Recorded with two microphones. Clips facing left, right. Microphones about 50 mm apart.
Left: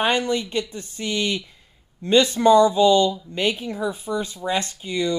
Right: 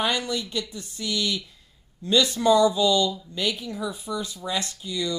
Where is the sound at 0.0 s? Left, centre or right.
Left.